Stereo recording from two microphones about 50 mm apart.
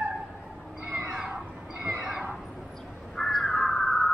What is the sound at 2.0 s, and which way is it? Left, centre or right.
Neigh, centre.